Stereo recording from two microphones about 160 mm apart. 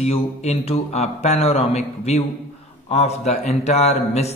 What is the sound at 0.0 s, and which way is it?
A man's voice, 40° left (ahead or behind).